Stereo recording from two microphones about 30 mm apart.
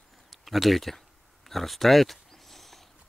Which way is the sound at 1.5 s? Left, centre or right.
Centre.